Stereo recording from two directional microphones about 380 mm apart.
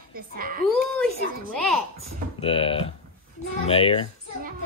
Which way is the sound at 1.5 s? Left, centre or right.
Centre.